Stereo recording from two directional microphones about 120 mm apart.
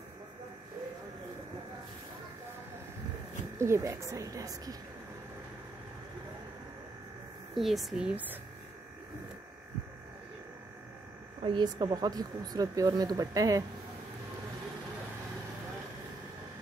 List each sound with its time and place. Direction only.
3.5 s speech: 25° right (ahead or behind)
7.5 s speech: centre (ahead or behind)
11.4 s speech: 40° right (ahead or behind)